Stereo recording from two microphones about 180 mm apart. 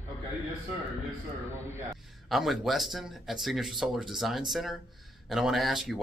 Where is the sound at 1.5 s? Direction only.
15° right (ahead or behind).